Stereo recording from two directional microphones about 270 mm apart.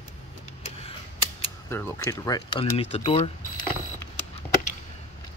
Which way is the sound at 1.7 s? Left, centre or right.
Centre.